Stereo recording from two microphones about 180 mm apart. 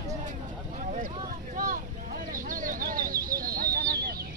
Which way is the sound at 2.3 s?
50° right (ahead or behind).